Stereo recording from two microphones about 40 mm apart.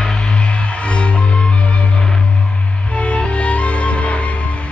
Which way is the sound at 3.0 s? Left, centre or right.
Left.